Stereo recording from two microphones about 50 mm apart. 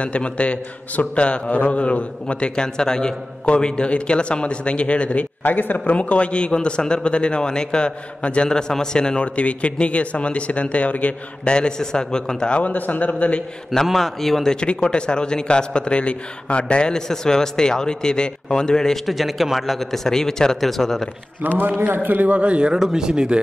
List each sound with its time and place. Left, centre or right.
0.0 s a man's voice: left
5.4 s a man's voice: left
5.9 s a man's voice: left
12.7 s a man's voice: left
13.8 s speech: centre
19.0 s speech: centre
21.4 s a man's voice: right
22.7 s speech: centre